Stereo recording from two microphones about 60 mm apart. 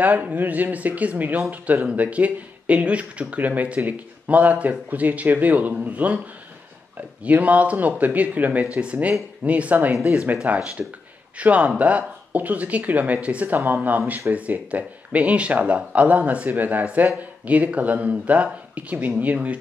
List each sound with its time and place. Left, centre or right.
0.0 s speech: right
7.2 s speech: right